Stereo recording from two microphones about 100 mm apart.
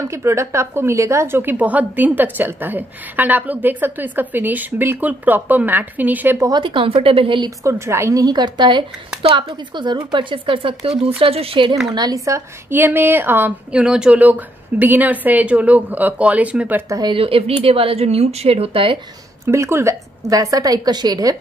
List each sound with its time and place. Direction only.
0.0 s a woman's voice: 30° right (ahead or behind)
6.6 s speech: 60° right (ahead or behind)
7.6 s a woman's voice: 30° right (ahead or behind); by 11.7 s 65° right (ahead or behind)
11.9 s a woman's voice: 40° right (ahead or behind); by 16.8 s 15° right (ahead or behind)
17.1 s speech: 70° right (ahead or behind)
19.4 s a woman's voice: 30° right (ahead or behind)